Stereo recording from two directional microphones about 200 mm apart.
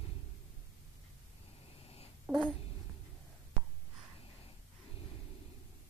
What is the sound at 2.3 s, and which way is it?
Babbling, 10° right (ahead or behind).